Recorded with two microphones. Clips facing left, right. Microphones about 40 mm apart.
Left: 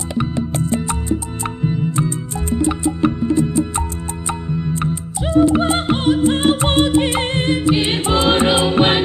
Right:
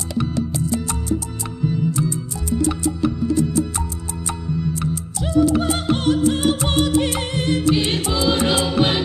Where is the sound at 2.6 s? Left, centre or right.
Left.